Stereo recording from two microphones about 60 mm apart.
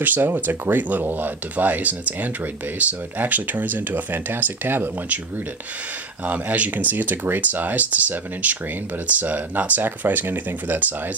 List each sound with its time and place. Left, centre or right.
0.0 s speech: right
6.2 s speech: right